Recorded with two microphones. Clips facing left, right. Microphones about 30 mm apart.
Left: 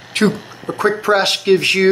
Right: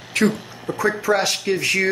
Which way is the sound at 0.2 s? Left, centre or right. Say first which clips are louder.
Left 3 dB; left.